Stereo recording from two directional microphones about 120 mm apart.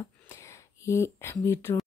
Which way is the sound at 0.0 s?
25° left (ahead or behind).